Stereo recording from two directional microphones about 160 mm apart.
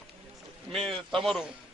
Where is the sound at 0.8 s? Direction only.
35° right (ahead or behind).